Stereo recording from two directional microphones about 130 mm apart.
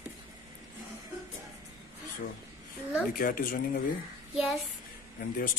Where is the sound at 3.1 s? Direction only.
90° left.